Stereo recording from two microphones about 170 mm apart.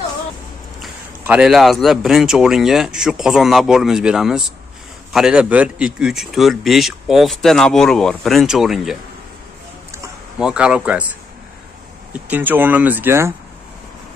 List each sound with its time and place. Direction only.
1.2 s a man's voice: 5° right (ahead or behind)
10.4 s a man's voice: 5° right (ahead or behind)
12.1 s speech: 10° right (ahead or behind)